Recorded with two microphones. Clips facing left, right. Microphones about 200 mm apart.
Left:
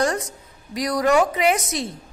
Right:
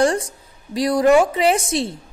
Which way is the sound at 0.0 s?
30° right (ahead or behind).